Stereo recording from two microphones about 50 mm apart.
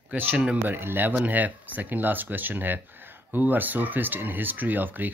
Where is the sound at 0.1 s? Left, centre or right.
Right.